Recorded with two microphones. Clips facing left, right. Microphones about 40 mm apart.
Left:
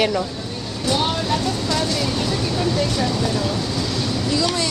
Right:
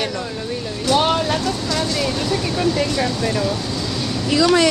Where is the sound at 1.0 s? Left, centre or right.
Right.